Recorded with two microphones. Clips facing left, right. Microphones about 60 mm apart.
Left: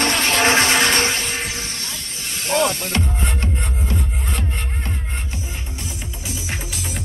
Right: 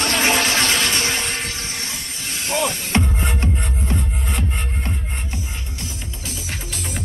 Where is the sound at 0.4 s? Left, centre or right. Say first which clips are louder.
Left 4 dB; left.